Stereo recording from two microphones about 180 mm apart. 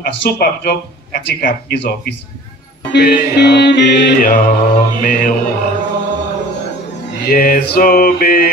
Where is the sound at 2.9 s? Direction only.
65° left (ahead or behind).